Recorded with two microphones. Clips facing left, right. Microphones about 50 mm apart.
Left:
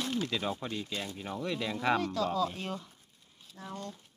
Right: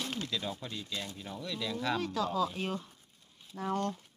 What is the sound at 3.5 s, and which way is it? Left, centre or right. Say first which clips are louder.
Speech: right 8 dB; right.